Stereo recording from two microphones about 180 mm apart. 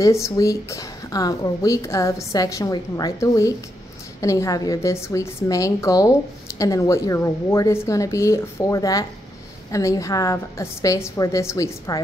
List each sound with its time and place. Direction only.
0.0 s a woman's voice: 15° left (ahead or behind)